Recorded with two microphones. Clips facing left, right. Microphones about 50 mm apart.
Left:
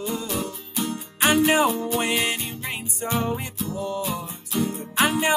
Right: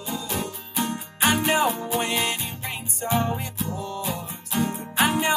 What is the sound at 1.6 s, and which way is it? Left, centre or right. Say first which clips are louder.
Music: left 1 dB; centre.